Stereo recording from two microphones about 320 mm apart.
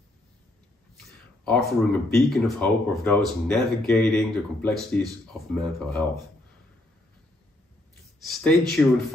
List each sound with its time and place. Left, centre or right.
0.9 s speech: centre
8.2 s speech: centre